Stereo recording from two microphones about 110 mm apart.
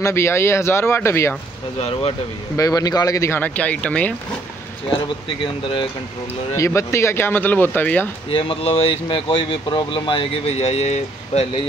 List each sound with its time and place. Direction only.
0.0 s speech: 25° left (ahead or behind)
1.8 s speech: 70° left (ahead or behind)
2.5 s speech: 30° left (ahead or behind); by 4.1 s 10° left (ahead or behind)
4.8 s speech: 50° left (ahead or behind)
6.5 s speech: 25° left (ahead or behind)
8.3 s speech: 55° left (ahead or behind); by 11.4 s 85° left